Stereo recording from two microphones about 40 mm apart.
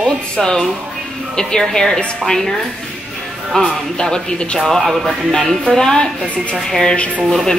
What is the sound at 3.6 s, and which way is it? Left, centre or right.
Speech, left.